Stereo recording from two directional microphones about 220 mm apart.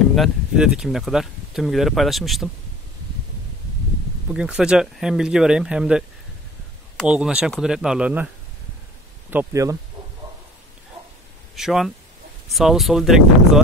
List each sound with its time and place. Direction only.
0.1 s speech: centre (ahead or behind)
4.3 s speech: 5° right (ahead or behind)
9.3 s speech: 10° right (ahead or behind)
11.5 s speech: centre (ahead or behind)